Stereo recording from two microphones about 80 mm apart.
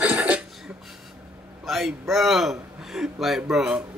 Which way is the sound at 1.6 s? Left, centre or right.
Centre.